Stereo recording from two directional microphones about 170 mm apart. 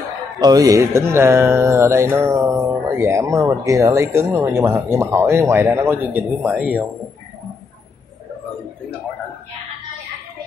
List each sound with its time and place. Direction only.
0.4 s music: 20° right (ahead or behind)